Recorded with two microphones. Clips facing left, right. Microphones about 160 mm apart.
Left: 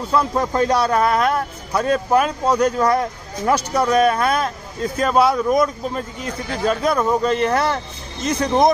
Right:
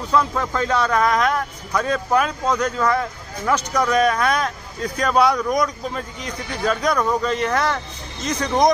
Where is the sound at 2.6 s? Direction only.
35° left (ahead or behind).